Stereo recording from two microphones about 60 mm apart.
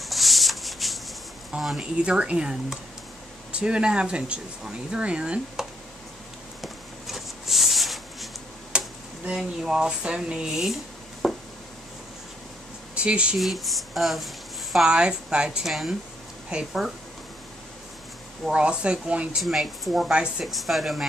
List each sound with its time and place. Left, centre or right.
0.0 s rub: centre
1.8 s speech: centre
6.6 s a sound: centre
8.7 s a sound: centre
9.6 s speech: centre
11.2 s a sound: centre
12.9 s speech: centre
13.4 s speech: centre
14.9 s speech: centre
16.5 s speech: centre
18.5 s speech: centre
19.4 s speech: centre